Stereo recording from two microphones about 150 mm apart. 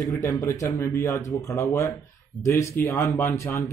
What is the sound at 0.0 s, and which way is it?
A man's voice, 20° left (ahead or behind).